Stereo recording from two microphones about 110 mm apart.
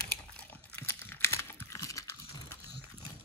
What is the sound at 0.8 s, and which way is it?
Computer keyboard, 20° left (ahead or behind).